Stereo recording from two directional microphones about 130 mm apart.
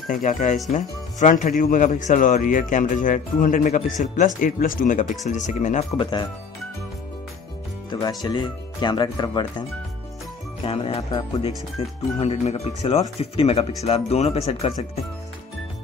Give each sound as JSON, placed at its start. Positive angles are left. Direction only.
{"t": 0.1, "sound": "speech", "side_deg": 85}
{"t": 4.4, "sound": "speech", "side_deg": 90}
{"t": 5.2, "sound": "speech", "side_deg": 70}
{"t": 5.9, "sound": "speech", "side_deg": 35}
{"t": 7.9, "sound": "speech", "side_deg": 30}
{"t": 10.6, "sound": "speech", "side_deg": 45}
{"t": 12.2, "sound": "speech", "side_deg": 55}